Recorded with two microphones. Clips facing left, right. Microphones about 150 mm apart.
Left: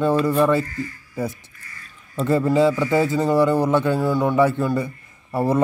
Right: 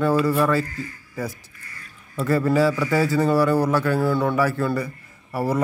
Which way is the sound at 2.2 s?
20° left (ahead or behind).